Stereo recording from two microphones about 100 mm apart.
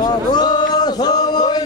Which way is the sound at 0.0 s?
45° left (ahead or behind).